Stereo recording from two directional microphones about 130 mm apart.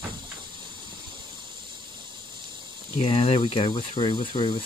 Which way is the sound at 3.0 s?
50° left (ahead or behind).